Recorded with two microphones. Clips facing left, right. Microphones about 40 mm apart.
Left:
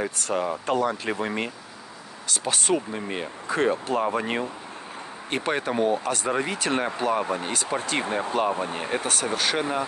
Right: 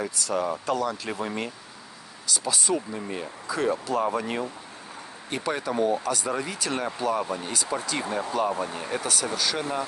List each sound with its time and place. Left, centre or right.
0.0 s speech: left
2.3 s speech: left